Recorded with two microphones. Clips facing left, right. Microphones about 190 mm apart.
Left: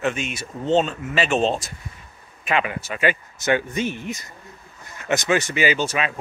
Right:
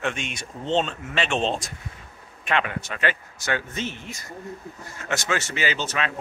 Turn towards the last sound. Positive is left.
turn(degrees=10)  # may be behind; listen again after turning